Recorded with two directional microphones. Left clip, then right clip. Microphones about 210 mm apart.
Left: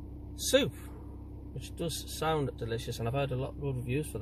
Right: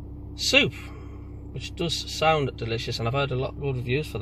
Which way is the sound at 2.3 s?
20° right (ahead or behind).